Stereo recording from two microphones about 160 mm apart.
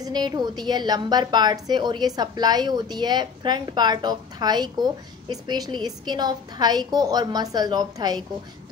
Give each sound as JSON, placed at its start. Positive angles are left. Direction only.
{"t": 0.0, "sound": "a woman's voice", "side_deg": -25}